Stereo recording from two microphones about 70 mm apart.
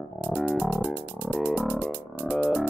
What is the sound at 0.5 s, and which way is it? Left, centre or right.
Music, right.